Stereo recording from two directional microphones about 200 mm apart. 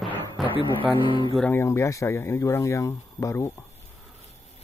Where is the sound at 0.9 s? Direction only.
25° left (ahead or behind).